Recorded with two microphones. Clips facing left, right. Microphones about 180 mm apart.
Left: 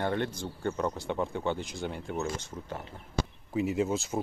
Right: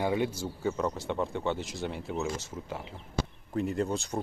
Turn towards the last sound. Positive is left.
turn(degrees=0)  # may be behind; listen again after turning